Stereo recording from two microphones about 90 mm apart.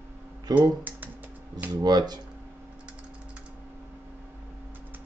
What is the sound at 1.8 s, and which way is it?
Speech, 50° right (ahead or behind).